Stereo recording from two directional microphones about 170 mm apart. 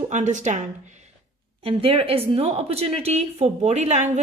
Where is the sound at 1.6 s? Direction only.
35° right (ahead or behind).